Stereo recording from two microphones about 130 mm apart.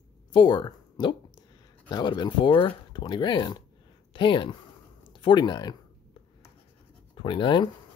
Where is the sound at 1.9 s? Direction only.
35° left (ahead or behind).